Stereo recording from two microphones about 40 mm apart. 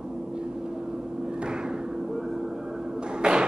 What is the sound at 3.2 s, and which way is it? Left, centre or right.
Tap, right.